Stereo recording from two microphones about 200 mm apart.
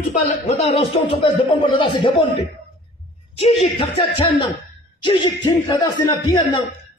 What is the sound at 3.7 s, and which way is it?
A man's voice, 25° left (ahead or behind).